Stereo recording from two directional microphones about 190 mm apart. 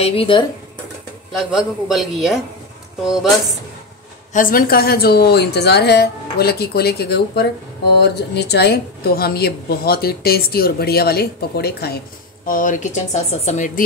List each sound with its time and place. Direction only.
0.0 s speech: 30° left (ahead or behind)
1.3 s a man's voice: centre (ahead or behind)
4.3 s a woman's voice: 45° left (ahead or behind)
12.4 s speech: 45° left (ahead or behind)